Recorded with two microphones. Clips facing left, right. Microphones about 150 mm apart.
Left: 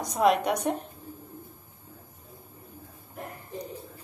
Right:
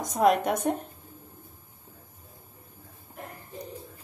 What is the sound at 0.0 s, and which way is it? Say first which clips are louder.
Speech: right 1 dB; 45° right (ahead or behind).